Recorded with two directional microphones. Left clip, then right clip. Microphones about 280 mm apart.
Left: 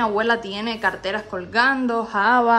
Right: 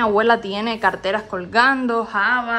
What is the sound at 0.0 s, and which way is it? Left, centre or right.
A woman's voice, centre.